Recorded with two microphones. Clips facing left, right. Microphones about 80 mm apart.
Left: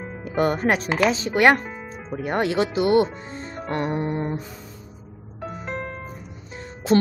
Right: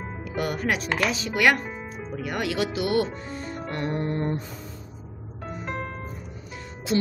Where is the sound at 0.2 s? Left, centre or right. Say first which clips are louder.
Left 7 dB; left; by 4.4 s centre.